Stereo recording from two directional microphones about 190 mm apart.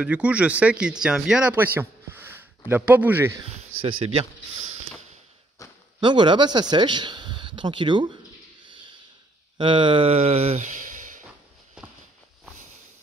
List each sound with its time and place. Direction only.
0.0 s speech: 5° right (ahead or behind)
3.8 s speech: 30° right (ahead or behind)
5.6 s a sound: 15° left (ahead or behind)
5.9 s speech: 25° right (ahead or behind)
9.6 s a sound: 25° right (ahead or behind); by 11.2 s 45° right (ahead or behind)
11.8 s walk: 5° right (ahead or behind)